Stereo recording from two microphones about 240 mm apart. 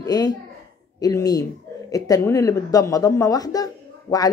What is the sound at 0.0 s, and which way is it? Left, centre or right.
A child's voice, centre.